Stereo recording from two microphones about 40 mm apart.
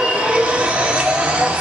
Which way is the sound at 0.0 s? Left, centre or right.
Right.